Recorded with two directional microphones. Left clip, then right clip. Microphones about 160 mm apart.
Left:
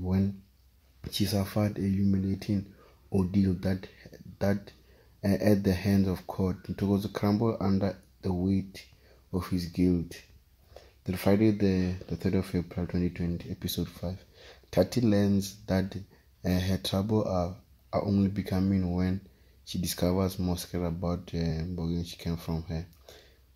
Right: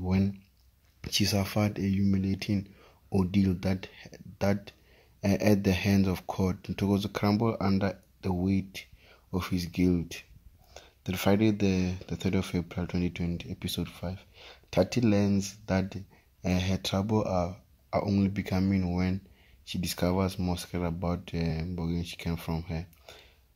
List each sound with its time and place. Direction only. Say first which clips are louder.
0.0 s a sound: right 1 dB; 10° right (ahead or behind)
1.0 s speech: right 3 dB; 10° right (ahead or behind)
9.7 s speech: left 1 dB; 20° right (ahead or behind)
10.7 s speech: even; 5° right (ahead or behind)